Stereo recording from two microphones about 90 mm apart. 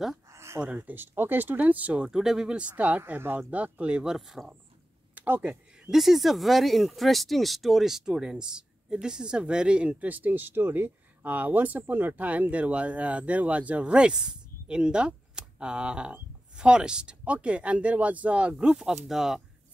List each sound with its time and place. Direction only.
0.3 s a sound: 30° right (ahead or behind)
0.7 s speech: 25° right (ahead or behind); by 4.6 s 5° right (ahead or behind)
5.1 s speech: 20° right (ahead or behind)
5.9 s speech: centre (ahead or behind)